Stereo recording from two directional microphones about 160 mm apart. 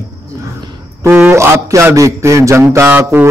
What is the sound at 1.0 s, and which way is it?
A man's voice, 15° right (ahead or behind).